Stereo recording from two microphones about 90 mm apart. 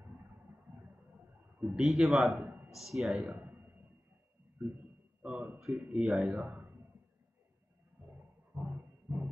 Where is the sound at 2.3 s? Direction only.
20° right (ahead or behind).